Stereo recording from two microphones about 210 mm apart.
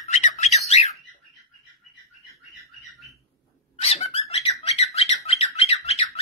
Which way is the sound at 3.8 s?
30° left (ahead or behind).